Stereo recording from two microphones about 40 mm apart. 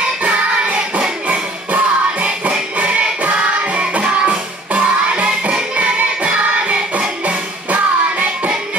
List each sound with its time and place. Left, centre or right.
0.2 s music: right
1.7 s music: right